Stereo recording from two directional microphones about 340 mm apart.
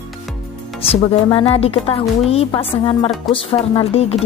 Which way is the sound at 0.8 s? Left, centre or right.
Centre.